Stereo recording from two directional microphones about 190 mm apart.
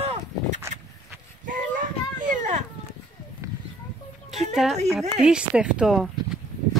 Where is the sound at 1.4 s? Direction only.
45° right (ahead or behind).